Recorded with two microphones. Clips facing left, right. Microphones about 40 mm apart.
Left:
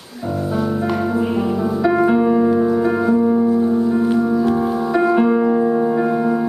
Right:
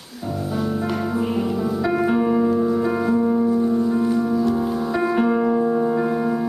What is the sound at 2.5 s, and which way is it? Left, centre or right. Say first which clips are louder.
Music: left 4 dB; left.